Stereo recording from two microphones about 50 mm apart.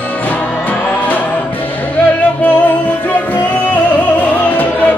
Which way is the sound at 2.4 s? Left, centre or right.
Left.